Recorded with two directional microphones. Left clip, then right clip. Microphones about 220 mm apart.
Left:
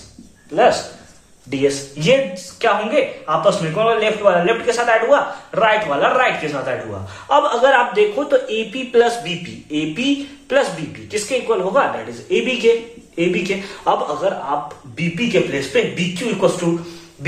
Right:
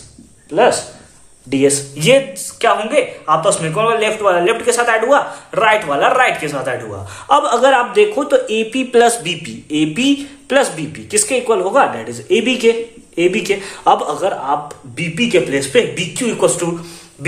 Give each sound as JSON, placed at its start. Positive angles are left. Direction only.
{"t": 1.5, "sound": "speech", "side_deg": -50}